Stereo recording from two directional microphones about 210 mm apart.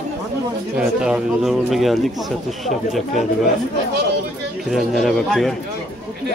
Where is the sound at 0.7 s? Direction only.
5° right (ahead or behind).